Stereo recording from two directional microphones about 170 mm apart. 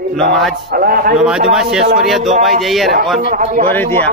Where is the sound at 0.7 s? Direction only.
60° right (ahead or behind).